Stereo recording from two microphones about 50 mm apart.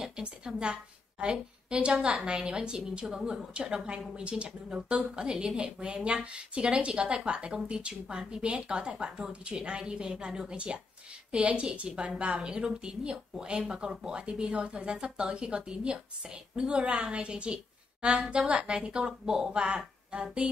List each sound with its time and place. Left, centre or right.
0.0 s a woman's voice: centre
3.5 s speech: centre